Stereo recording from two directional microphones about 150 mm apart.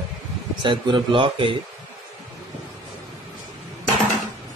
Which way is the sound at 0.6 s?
30° right (ahead or behind).